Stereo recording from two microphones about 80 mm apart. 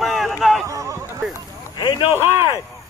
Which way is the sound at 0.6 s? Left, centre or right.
Right.